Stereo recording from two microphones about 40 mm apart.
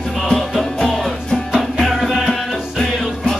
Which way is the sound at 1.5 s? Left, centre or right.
Centre.